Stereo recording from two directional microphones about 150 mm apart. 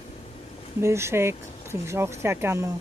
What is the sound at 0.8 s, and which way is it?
Speech, 20° right (ahead or behind).